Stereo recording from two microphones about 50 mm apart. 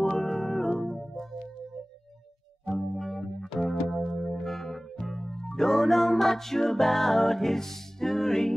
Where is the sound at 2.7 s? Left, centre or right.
Centre.